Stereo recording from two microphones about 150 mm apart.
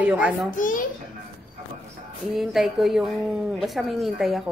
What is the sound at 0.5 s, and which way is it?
Speech, 60° left (ahead or behind).